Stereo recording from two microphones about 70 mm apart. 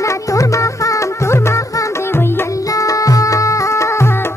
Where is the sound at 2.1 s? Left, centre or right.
Left.